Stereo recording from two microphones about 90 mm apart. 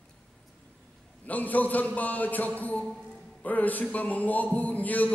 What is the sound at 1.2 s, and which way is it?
A man's voice, 20° left (ahead or behind).